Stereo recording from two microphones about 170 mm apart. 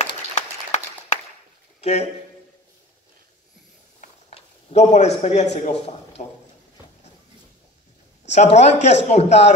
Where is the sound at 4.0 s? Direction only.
40° left (ahead or behind).